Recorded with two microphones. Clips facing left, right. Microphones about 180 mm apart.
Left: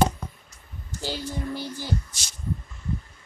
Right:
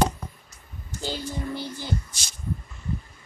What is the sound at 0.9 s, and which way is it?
Speech, 20° right (ahead or behind).